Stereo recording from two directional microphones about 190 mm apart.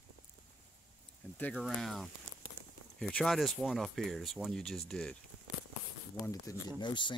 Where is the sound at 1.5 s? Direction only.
Centre (ahead or behind).